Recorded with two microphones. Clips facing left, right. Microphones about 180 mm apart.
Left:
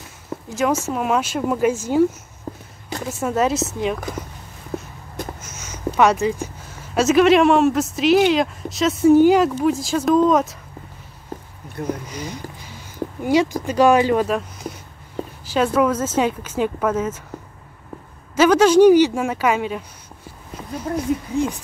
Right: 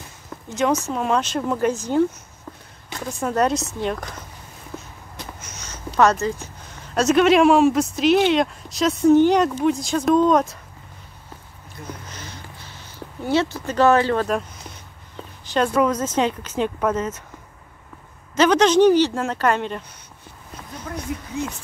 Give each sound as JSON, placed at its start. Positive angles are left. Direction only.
{"t": 0.5, "sound": "speech", "side_deg": 5}
{"t": 2.5, "sound": "a sound", "side_deg": 35}
{"t": 3.1, "sound": "speech", "side_deg": 5}
{"t": 5.9, "sound": "speech", "side_deg": 10}
{"t": 11.8, "sound": "speech", "side_deg": 55}
{"t": 12.1, "sound": "speech", "side_deg": 15}
{"t": 15.4, "sound": "speech", "side_deg": 5}
{"t": 18.3, "sound": "speech", "side_deg": 5}